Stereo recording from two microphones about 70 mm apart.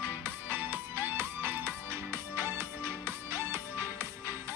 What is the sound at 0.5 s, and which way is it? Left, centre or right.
Music, right.